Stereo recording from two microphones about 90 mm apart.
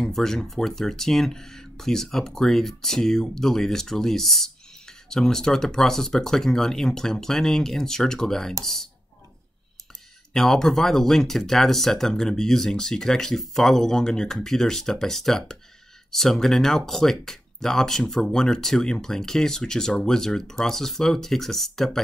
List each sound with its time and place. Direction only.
0.0 s speech: 5° left (ahead or behind)
10.3 s speech: 5° left (ahead or behind)